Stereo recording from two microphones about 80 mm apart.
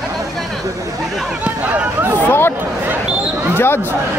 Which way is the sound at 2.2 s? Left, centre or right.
Left.